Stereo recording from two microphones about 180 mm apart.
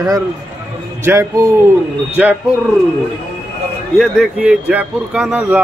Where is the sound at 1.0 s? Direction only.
15° right (ahead or behind).